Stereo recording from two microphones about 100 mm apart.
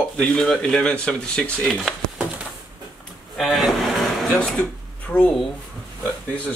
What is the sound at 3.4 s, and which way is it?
Speech, 5° right (ahead or behind).